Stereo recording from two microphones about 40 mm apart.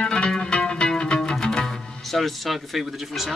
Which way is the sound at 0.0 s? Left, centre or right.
Left.